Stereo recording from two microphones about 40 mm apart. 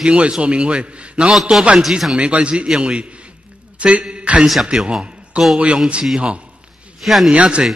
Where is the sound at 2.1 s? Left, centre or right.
Right.